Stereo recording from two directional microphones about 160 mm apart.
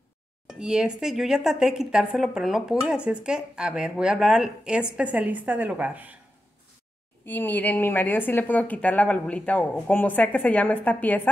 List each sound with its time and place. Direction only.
0.5 s speech: 5° right (ahead or behind)
7.2 s a woman's voice: 10° left (ahead or behind)